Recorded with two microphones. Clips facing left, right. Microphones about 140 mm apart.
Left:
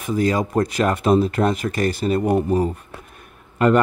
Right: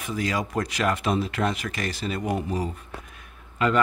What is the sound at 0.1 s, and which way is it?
Speech, 45° left (ahead or behind).